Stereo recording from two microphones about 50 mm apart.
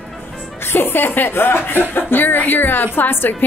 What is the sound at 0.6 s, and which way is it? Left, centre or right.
A woman's voice, left.